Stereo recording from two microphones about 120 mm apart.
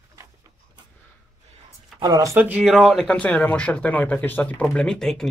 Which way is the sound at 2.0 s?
30° right (ahead or behind).